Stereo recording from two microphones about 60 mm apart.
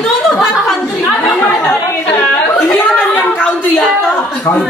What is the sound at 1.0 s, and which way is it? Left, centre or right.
Chatter, left.